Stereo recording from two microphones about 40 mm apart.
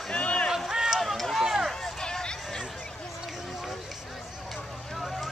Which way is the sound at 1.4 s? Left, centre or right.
Centre.